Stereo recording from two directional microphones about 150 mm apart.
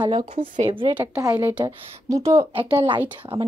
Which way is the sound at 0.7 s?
35° right (ahead or behind).